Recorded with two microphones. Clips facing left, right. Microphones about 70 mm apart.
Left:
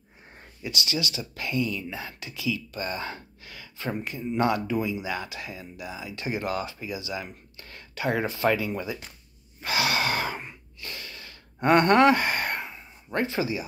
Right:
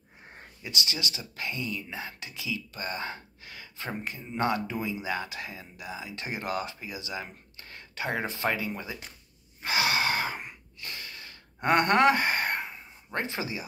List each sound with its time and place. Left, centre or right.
0.4 s speech: right
9.6 s gasp: right